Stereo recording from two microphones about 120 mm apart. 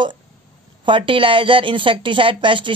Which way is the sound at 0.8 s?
45° right (ahead or behind).